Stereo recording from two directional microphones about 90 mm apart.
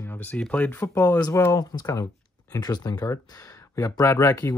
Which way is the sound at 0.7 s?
35° left (ahead or behind).